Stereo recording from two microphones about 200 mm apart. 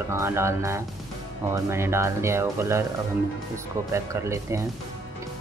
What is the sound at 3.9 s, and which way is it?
Speech, 15° right (ahead or behind).